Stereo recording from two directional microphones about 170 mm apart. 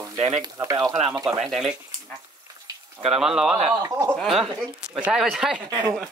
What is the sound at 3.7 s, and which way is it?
Speech, 20° right (ahead or behind).